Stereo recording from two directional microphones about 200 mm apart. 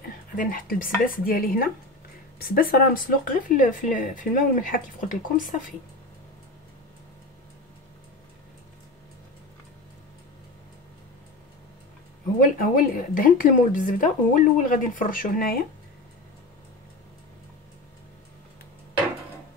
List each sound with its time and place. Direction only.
0.0 s speech: 45° left (ahead or behind)
12.5 s speech: 45° left (ahead or behind)